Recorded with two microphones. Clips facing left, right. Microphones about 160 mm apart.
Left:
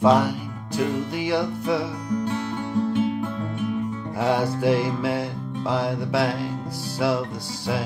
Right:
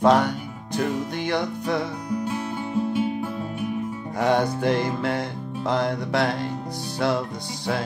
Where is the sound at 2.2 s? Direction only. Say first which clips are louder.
Left 1 dB; 10° right (ahead or behind).